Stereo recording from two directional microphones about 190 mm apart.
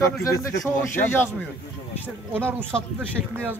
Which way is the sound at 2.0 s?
10° right (ahead or behind).